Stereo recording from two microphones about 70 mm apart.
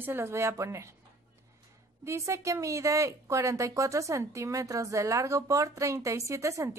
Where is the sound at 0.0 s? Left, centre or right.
Right.